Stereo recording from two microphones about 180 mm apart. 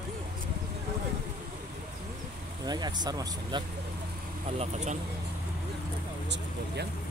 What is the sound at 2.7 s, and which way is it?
Speech, 25° right (ahead or behind).